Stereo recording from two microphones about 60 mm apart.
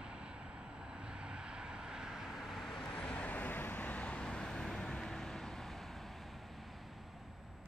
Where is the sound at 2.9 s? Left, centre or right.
Left; by 6.0 s centre.